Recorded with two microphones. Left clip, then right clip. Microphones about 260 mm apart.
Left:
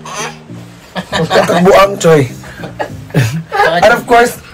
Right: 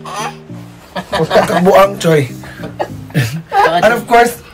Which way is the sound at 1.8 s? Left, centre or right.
Centre.